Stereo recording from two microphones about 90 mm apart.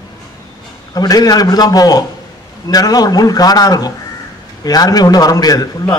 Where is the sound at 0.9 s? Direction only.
45° left (ahead or behind).